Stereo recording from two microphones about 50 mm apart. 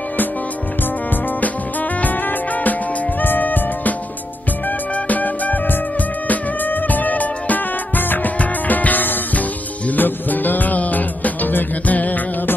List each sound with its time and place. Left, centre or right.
2.0 s music: left
5.0 s music: left